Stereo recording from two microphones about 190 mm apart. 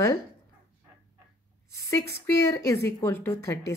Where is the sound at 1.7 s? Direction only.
15° left (ahead or behind).